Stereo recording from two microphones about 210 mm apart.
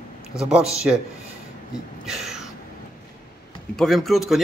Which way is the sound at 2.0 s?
Centre (ahead or behind).